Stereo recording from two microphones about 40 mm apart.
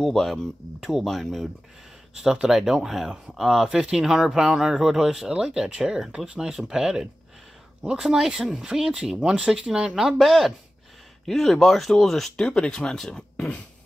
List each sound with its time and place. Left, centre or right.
0.0 s speech: centre
2.5 s speech: centre
11.2 s speech: centre
12.4 s speech: left
12.9 s speech: centre